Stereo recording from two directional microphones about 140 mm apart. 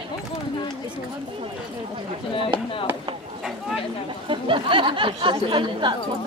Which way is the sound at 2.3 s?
40° left (ahead or behind).